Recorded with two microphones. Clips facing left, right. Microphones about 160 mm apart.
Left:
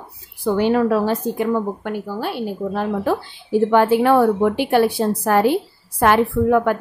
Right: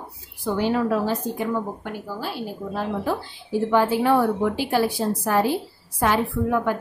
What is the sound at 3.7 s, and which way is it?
A woman's voice, 65° left (ahead or behind).